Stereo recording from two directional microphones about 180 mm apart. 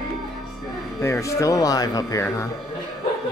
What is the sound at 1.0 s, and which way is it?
Speech, 15° left (ahead or behind).